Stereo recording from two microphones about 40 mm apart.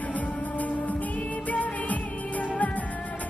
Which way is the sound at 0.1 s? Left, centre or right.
Left.